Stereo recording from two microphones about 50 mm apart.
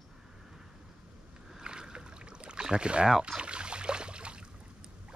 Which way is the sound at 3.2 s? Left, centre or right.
Centre.